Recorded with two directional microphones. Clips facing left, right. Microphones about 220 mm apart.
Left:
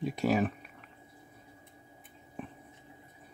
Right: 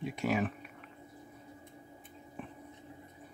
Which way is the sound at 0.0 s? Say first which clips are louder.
Left 4 dB; 35° left (ahead or behind).